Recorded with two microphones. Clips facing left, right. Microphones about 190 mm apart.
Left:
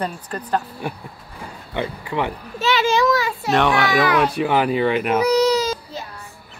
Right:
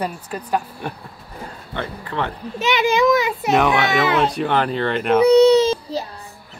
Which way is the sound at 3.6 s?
Centre (ahead or behind).